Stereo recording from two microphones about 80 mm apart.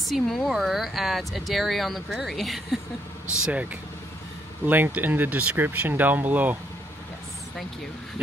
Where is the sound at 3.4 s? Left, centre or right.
Centre.